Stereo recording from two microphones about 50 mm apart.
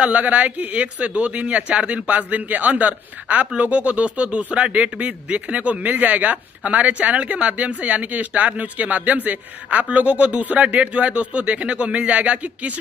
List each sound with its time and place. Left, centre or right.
0.0 s speech: right